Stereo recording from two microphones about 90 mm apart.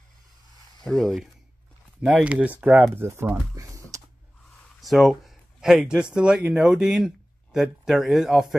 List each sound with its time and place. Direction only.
0.8 s speech: 5° left (ahead or behind)
2.0 s speech: 15° right (ahead or behind)
3.0 s speech: 25° right (ahead or behind)
4.8 s speech: centre (ahead or behind)